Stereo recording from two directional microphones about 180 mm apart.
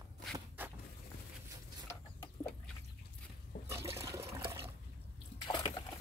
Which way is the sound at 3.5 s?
45° left (ahead or behind).